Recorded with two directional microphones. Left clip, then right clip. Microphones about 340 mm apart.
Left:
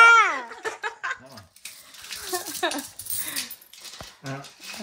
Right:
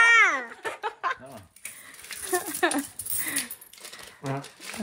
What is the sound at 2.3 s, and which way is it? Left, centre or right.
Dishes, right.